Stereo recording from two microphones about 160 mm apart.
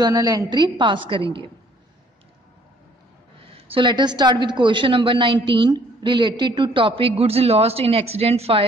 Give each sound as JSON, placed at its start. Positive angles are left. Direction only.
{"t": 0.0, "sound": "a woman's voice", "side_deg": -20}
{"t": 3.4, "sound": "a woman's voice", "side_deg": -30}